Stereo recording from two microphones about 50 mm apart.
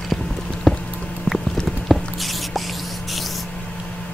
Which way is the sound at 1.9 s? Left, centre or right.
Centre.